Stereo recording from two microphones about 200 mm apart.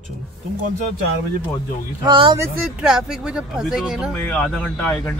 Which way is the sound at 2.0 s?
20° right (ahead or behind).